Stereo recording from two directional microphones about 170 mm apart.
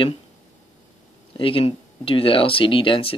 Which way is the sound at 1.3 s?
30° left (ahead or behind).